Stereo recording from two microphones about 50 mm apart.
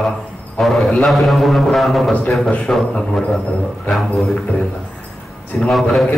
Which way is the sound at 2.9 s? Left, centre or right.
Centre.